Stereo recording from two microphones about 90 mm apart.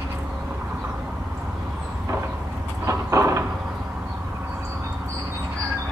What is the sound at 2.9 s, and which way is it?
Vehicle, 35° right (ahead or behind).